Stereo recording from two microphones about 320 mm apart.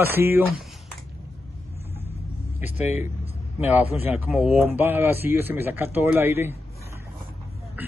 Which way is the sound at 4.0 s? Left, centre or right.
Centre.